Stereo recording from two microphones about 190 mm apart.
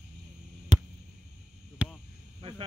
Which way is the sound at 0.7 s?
40° right (ahead or behind).